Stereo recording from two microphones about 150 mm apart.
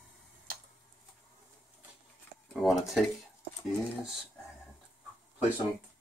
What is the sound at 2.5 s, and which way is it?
Speech, centre (ahead or behind).